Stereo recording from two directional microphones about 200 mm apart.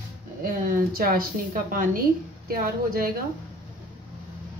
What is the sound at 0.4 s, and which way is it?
A woman's voice, 45° right (ahead or behind).